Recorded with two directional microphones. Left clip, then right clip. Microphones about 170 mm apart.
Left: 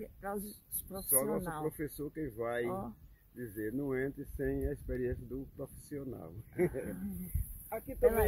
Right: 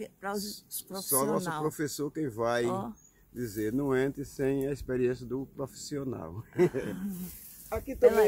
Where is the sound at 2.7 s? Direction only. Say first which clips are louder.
Right 6 dB; 30° left (ahead or behind).